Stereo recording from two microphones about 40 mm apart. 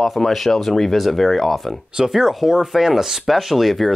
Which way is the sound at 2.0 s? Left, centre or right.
Centre.